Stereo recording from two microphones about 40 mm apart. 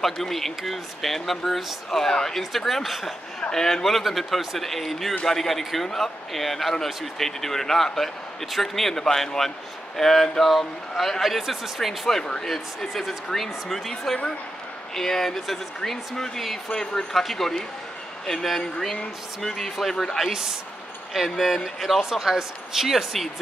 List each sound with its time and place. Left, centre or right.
0.0 s speech: centre
3.3 s speech: centre
12.2 s speech: centre
12.4 s speech: centre
17.1 s speech: centre
20.2 s speech: centre